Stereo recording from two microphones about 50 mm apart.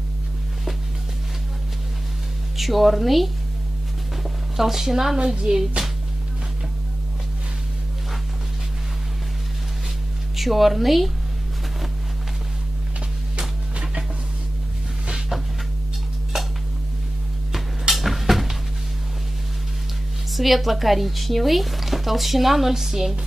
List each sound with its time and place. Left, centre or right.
2.5 s speech: centre
4.6 s speech: centre
5.2 s speech: centre
10.3 s speech: centre
13.4 s music: centre
15.0 s a sound: centre
20.3 s speech: centre